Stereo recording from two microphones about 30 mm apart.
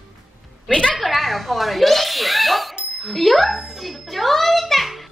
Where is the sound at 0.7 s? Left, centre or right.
Left.